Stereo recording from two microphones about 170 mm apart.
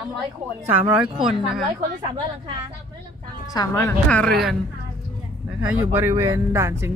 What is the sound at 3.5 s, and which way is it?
Speech, 20° left (ahead or behind).